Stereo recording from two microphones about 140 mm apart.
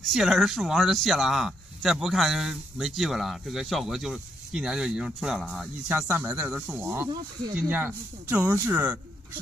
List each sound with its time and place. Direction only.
0.0 s speech: centre (ahead or behind)